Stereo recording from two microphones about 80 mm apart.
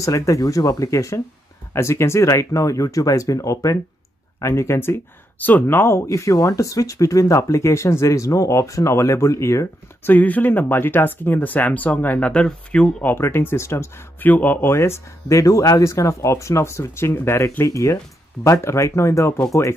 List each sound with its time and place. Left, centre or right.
0.0 s speech: left
6.0 s speech: left
10.0 s speech: left
13.0 s speech: left
14.2 s speech: left
14.7 s speech: left